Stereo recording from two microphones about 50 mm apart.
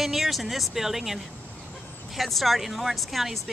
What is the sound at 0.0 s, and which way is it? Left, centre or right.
Speech, centre.